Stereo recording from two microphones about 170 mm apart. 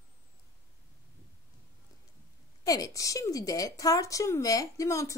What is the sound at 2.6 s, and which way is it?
A woman's voice, 20° left (ahead or behind).